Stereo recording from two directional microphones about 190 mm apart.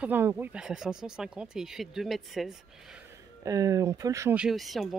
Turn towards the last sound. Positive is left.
turn(degrees=0)  # may be behind; listen again after turning